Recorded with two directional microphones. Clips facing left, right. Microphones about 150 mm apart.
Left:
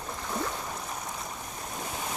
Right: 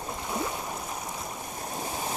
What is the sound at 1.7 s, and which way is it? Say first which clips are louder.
Stream: right 2 dB; 30° right (ahead or behind).